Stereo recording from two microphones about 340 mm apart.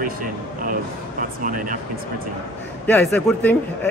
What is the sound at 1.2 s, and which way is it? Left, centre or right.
Speech, right.